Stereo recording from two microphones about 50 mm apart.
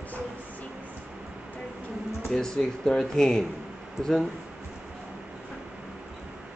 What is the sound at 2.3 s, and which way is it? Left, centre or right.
Speech, centre.